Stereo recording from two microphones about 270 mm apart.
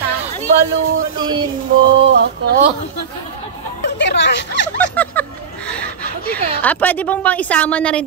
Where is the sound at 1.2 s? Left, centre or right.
Centre.